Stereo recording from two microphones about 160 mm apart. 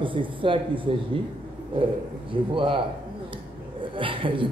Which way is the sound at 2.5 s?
30° right (ahead or behind).